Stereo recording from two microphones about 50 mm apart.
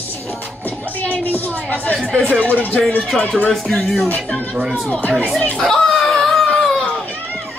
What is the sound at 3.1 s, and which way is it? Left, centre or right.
Speech, centre.